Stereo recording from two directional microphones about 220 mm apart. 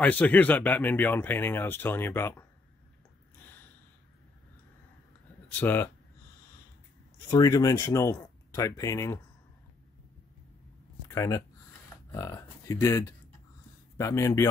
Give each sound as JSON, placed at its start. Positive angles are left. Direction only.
{"t": 0.0, "sound": "speech", "side_deg": 5}
{"t": 3.3, "sound": "gasp", "side_deg": 10}
{"t": 5.5, "sound": "speech", "side_deg": 10}
{"t": 7.2, "sound": "speech", "side_deg": 15}
{"t": 11.1, "sound": "speech", "side_deg": 15}